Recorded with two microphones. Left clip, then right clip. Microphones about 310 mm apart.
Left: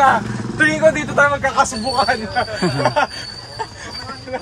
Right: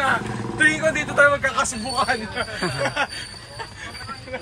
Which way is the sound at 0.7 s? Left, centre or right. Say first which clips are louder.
Left 6 dB; left.